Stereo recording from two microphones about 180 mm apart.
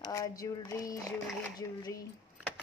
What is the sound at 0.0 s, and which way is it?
A woman's voice, 20° left (ahead or behind).